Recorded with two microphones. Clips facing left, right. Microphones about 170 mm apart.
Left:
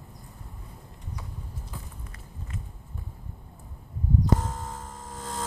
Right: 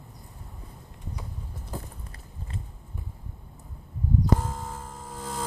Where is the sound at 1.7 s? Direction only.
40° right (ahead or behind).